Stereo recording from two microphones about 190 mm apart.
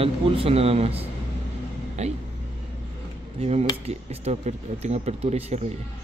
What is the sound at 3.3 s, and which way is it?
Speech, 35° right (ahead or behind).